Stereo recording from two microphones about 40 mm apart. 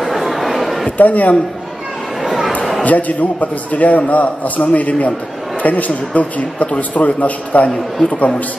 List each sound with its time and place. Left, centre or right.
0.0 s a sound: centre
0.9 s a man's voice: left
2.2 s chatter: centre
2.8 s a man's voice: left